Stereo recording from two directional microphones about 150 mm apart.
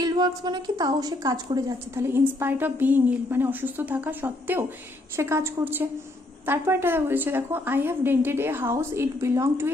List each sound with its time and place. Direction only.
0.0 s a woman's voice: 25° right (ahead or behind)